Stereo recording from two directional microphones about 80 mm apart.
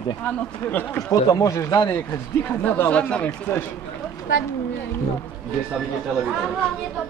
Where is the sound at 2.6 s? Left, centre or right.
Left.